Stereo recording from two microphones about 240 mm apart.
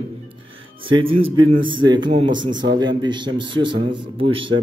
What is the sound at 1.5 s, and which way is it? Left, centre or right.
A man's voice, centre.